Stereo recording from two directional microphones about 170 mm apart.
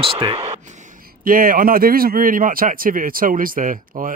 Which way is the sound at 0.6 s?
45° right (ahead or behind).